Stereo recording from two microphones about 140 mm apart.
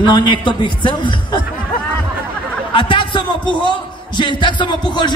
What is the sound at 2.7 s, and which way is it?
A man's voice, 35° left (ahead or behind).